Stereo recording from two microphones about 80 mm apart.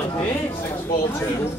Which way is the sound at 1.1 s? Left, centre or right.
Left.